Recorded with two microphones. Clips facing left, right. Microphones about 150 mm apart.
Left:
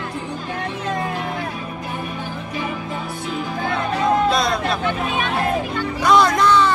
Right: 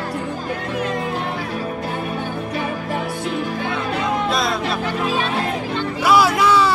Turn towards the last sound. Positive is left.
turn(degrees=-5)  # may be behind; listen again after turning